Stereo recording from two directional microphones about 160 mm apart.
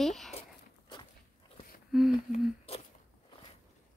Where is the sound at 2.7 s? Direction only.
35° left (ahead or behind).